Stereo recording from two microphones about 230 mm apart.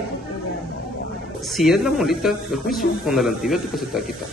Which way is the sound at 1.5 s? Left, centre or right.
Centre.